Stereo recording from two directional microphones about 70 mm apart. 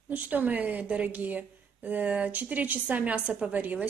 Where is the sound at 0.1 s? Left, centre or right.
Right.